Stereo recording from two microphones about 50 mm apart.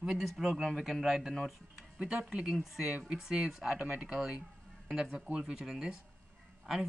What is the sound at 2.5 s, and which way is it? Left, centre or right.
A man's voice, centre.